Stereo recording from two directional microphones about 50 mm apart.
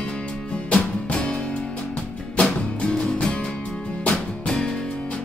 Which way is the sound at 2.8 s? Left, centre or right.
Centre.